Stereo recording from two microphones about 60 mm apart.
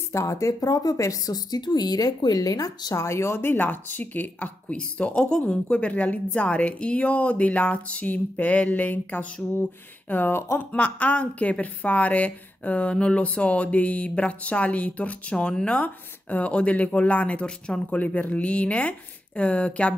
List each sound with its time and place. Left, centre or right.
0.1 s speech: left
3.0 s speech: left
3.3 s speech: left
10.7 s speech: left